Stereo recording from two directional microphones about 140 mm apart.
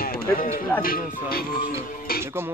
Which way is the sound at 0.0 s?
90° left.